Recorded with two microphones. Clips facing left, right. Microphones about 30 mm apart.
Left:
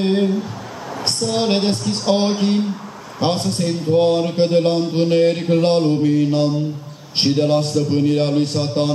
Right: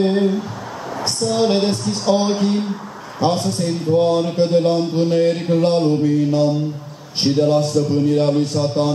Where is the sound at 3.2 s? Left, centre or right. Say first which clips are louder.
Right 1 dB; left.